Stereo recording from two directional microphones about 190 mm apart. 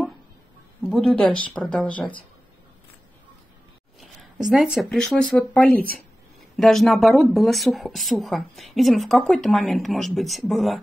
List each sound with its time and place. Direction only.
0.8 s speech: centre (ahead or behind)
4.0 s speech: centre (ahead or behind)